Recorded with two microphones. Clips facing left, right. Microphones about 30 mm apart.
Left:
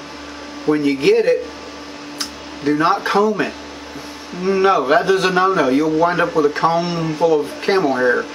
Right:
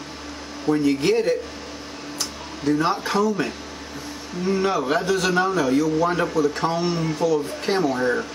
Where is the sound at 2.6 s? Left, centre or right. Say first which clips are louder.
Left 5 dB; left.